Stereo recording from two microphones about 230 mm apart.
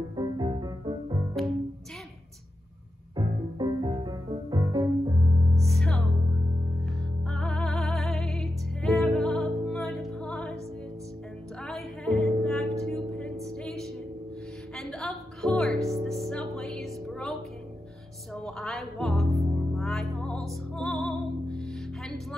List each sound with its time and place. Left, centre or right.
0.1 s music: centre
3.2 s music: centre
5.7 s music: centre
7.2 s music: centre
11.6 s music: centre